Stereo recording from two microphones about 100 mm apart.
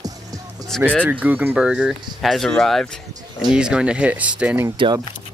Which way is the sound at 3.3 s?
5° right (ahead or behind).